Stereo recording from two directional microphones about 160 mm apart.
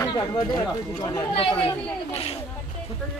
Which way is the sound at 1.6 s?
35° left (ahead or behind).